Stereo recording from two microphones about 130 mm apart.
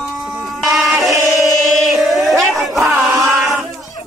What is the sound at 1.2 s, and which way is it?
Chant, centre (ahead or behind).